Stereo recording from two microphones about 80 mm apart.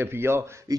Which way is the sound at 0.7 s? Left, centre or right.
Right.